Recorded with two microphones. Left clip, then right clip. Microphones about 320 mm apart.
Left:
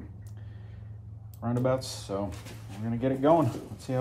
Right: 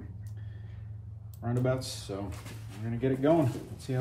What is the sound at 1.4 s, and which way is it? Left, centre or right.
Speech, centre.